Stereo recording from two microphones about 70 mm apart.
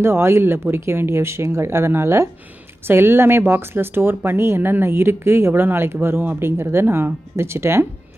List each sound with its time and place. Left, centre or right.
0.0 s speech: right